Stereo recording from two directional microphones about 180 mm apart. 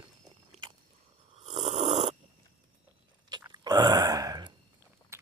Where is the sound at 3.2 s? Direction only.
25° right (ahead or behind).